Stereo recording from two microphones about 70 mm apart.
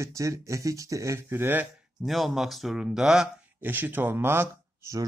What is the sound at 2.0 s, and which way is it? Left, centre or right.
Speech, centre.